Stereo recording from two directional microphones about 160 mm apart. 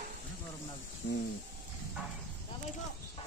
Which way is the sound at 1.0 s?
90° left.